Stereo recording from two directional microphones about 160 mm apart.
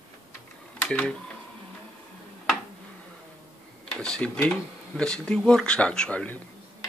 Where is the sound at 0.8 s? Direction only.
5° left (ahead or behind).